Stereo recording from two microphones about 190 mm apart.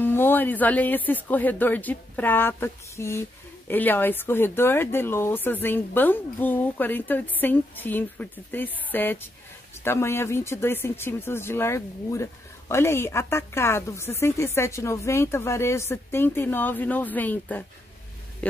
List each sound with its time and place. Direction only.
0.0 s a man's voice: 10° left (ahead or behind)